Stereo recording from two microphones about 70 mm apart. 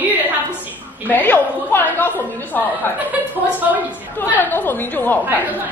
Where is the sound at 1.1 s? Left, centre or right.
Left.